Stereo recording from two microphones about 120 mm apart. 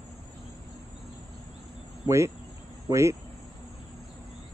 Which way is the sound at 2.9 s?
25° right (ahead or behind).